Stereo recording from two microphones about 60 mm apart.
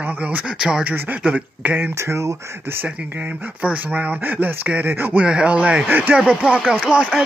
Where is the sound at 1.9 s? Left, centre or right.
Right.